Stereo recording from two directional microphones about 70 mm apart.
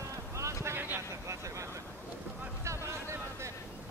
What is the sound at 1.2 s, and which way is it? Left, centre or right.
Vehicle, right.